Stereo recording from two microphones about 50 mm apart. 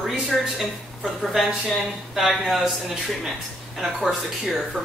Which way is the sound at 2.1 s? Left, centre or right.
Centre.